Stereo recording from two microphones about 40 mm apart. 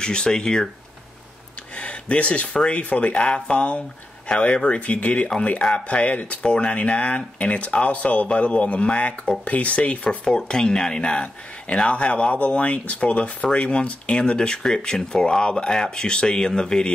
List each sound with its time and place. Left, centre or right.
0.0 s speech: centre
1.8 s speech: left
3.3 s speech: left
5.7 s speech: centre
6.4 s speech: left
10.2 s speech: centre